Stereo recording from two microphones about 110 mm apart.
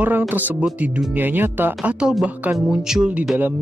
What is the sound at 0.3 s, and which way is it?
Speech, 15° right (ahead or behind).